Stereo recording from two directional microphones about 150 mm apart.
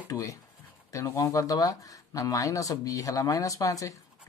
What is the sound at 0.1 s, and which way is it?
Speech, 20° left (ahead or behind).